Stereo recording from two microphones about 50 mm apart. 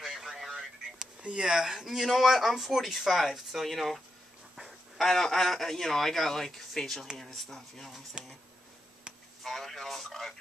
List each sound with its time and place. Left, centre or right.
0.0 s radio: centre
1.2 s speech: centre
8.2 s speech: centre
9.4 s speech: centre